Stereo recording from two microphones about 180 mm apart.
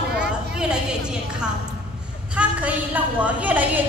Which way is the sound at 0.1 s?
65° right (ahead or behind).